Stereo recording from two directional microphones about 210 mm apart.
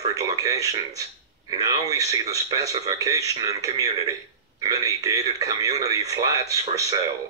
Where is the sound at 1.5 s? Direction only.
15° right (ahead or behind).